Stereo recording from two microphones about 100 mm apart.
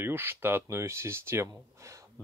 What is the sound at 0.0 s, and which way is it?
Speech, 20° right (ahead or behind).